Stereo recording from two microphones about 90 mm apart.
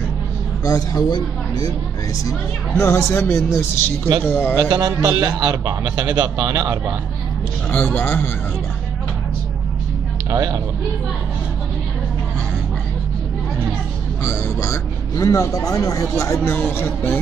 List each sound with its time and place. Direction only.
0.7 s speech: 40° left (ahead or behind)
2.7 s a man's voice: 35° left (ahead or behind)
4.6 s a man's voice: 45° right (ahead or behind)
7.7 s a man's voice: 20° left (ahead or behind)
10.3 s speech: 40° right (ahead or behind)
14.2 s a man's voice: 30° left (ahead or behind)